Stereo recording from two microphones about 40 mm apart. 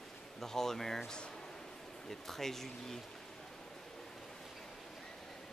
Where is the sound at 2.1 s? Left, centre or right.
Centre.